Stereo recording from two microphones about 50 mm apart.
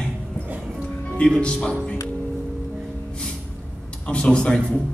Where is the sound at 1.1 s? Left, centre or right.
Centre.